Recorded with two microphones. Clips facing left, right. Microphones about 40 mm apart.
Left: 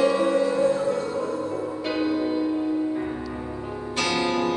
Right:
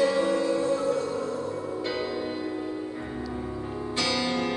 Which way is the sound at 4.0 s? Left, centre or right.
Left.